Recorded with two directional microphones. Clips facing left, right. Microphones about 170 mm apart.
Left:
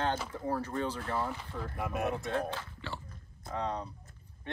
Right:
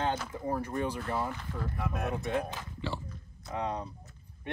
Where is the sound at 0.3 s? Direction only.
15° right (ahead or behind).